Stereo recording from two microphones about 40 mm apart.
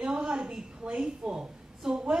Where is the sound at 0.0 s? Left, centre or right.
Right.